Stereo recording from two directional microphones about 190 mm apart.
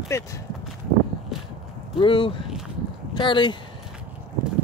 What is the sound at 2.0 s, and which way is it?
Speech, 25° left (ahead or behind).